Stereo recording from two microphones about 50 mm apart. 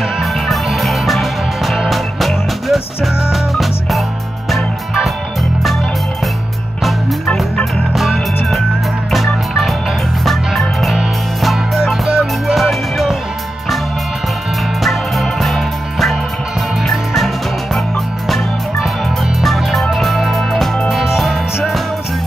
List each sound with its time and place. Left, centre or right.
0.2 s music: centre
6.8 s music: centre
9.1 s organ: centre
10.2 s music: centre
12.1 s music: centre
12.5 s music: centre
14.8 s music: centre
19.4 s music: centre